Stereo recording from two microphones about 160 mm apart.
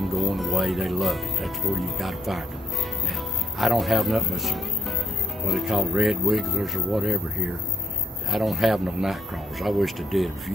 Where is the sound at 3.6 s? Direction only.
Centre (ahead or behind).